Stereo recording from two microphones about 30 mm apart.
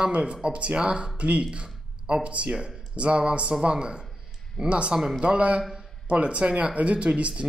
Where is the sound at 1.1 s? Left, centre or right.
Right.